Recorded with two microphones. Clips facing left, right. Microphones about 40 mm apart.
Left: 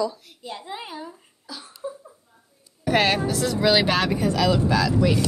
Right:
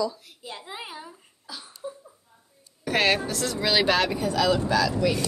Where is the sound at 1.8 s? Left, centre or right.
Left.